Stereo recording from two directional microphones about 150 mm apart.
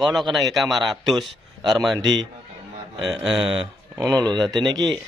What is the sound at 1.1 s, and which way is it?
Speech, 30° right (ahead or behind).